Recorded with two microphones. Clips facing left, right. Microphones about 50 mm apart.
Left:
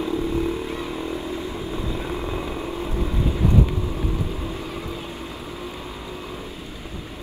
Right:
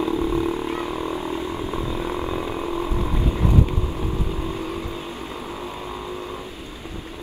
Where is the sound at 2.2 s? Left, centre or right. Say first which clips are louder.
Right 2 dB; centre.